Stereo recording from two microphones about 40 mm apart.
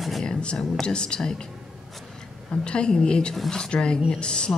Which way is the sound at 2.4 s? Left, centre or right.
Left.